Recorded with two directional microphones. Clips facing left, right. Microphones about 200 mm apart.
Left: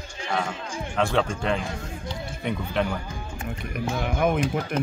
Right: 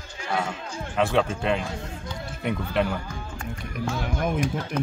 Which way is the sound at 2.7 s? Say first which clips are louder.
Right 1 dB; 5° right (ahead or behind).